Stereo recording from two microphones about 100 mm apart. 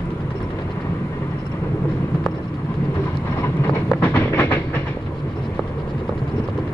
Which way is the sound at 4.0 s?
20° left (ahead or behind).